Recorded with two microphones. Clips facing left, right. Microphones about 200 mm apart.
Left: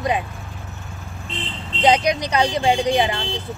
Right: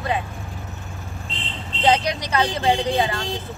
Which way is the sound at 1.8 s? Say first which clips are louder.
Left 3 dB; 15° left (ahead or behind).